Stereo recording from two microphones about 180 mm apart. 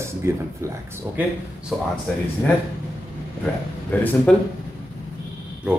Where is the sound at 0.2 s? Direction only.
15° right (ahead or behind).